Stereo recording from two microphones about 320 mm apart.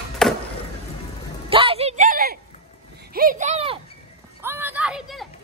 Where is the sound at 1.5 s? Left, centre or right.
Centre.